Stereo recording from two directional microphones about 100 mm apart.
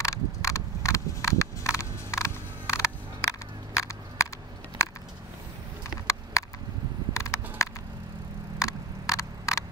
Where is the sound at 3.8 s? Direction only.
30° left (ahead or behind).